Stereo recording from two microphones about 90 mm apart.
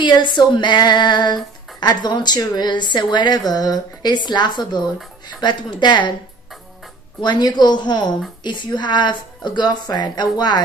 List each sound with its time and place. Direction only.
0.0 s a woman's voice: 60° left (ahead or behind)
7.2 s a woman's voice: 55° left (ahead or behind)